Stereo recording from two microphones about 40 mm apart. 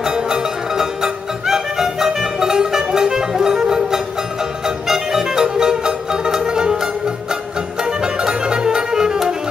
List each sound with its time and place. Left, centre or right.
0.0 s music: centre